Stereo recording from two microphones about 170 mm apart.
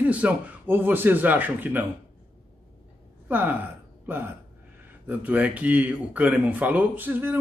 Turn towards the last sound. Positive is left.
turn(degrees=-10)  # may be behind; listen again after turning